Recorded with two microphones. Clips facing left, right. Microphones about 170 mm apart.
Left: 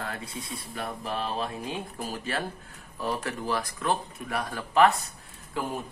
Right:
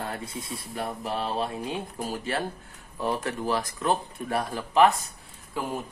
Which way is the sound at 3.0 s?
20° right (ahead or behind).